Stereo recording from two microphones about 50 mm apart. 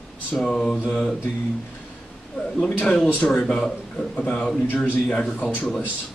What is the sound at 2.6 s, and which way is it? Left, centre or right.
Speech, left.